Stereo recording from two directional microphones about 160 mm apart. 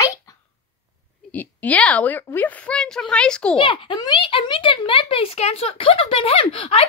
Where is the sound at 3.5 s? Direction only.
30° left (ahead or behind).